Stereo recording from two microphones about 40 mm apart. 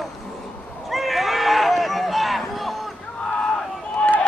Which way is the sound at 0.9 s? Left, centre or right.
Centre.